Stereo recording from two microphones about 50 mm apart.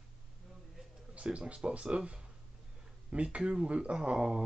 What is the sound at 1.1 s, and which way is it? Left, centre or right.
Speech, right.